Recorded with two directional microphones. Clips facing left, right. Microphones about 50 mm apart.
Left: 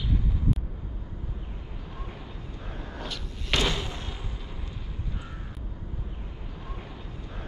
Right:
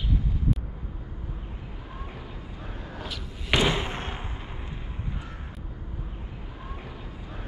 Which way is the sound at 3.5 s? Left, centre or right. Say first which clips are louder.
Right 3 dB; centre.